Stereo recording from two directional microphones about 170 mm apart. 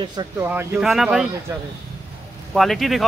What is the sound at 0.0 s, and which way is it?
Speech, 25° right (ahead or behind).